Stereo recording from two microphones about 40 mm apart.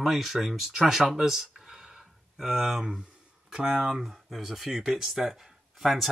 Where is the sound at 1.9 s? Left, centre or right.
Centre.